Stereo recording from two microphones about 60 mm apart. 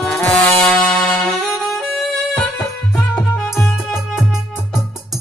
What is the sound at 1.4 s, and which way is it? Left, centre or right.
Music, centre.